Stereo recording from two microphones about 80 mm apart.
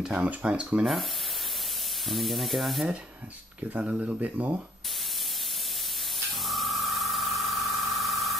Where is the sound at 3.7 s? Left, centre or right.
Centre.